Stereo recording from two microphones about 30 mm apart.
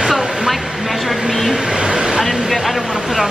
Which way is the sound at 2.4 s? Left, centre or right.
Centre.